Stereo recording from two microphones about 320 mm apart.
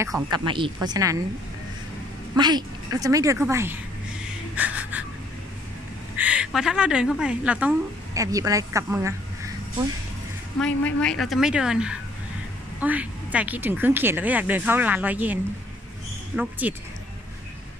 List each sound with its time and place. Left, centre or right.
0.0 s a woman's voice: centre
2.3 s a woman's voice: centre
4.6 s a sound: centre
6.1 s a woman's voice: centre
10.6 s a woman's voice: centre
16.3 s a woman's voice: centre